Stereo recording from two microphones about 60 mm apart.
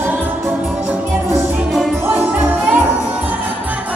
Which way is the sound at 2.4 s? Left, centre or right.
Right.